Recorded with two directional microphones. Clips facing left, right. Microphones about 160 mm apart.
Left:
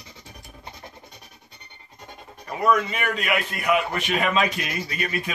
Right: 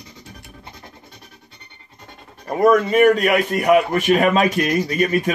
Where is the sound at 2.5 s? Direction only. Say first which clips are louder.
Right 7 dB; 45° right (ahead or behind).